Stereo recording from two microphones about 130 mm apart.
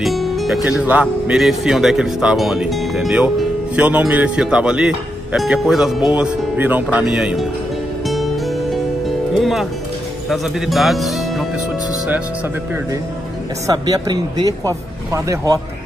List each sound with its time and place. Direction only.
0.0 s speech: centre (ahead or behind)
9.3 s speech: centre (ahead or behind)
13.7 s speech: 30° right (ahead or behind)